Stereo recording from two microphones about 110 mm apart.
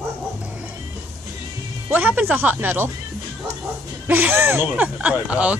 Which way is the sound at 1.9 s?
15° right (ahead or behind).